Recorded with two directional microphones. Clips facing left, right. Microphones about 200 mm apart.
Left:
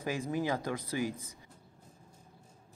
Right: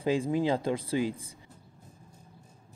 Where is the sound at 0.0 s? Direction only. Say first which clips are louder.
Right 6 dB; 30° right (ahead or behind).